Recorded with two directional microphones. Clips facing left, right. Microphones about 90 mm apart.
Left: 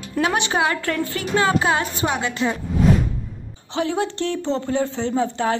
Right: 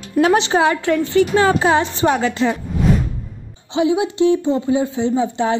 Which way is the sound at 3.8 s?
15° right (ahead or behind).